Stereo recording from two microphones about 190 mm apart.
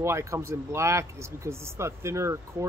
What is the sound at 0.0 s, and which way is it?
Speech, 15° right (ahead or behind).